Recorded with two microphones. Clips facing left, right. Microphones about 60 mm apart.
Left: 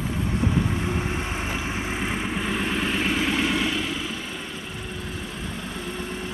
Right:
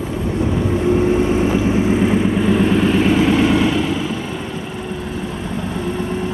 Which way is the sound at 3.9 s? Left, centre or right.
Right.